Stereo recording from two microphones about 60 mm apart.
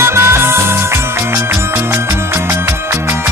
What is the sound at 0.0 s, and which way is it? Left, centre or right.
Music, right.